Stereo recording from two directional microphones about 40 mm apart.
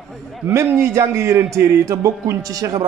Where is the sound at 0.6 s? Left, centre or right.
Right.